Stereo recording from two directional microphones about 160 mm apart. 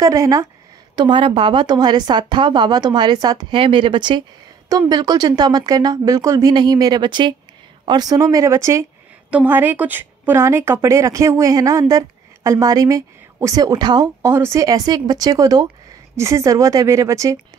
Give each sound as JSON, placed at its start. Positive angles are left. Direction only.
{"t": 0.0, "sound": "a woman's voice", "side_deg": -20}
{"t": 0.9, "sound": "a woman's voice", "side_deg": -30}